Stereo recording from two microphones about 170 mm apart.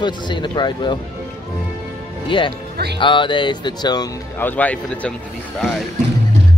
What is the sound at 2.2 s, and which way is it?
Speech, 30° left (ahead or behind).